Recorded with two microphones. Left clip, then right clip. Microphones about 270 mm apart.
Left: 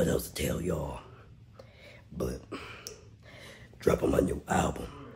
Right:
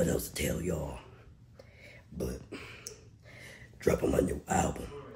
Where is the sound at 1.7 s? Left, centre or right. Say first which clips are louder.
Left 3 dB; centre.